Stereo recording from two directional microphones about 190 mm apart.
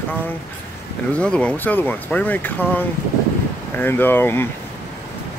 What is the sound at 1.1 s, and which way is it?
Speech, 5° left (ahead or behind).